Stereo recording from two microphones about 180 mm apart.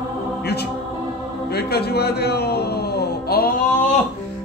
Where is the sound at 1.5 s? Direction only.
65° left (ahead or behind).